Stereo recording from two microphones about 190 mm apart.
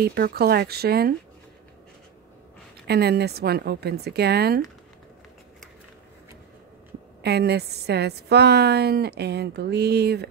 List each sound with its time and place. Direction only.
0.0 s a woman's voice: 55° right (ahead or behind)
2.9 s a woman's voice: 60° right (ahead or behind)
7.2 s a woman's voice: 60° right (ahead or behind)